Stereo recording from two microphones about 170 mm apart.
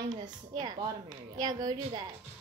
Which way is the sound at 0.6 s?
25° right (ahead or behind).